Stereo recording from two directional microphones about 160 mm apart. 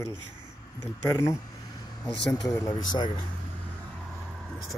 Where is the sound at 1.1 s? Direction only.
20° left (ahead or behind).